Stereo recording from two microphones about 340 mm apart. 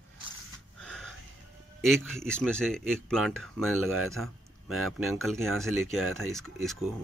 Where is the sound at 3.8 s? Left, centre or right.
Right.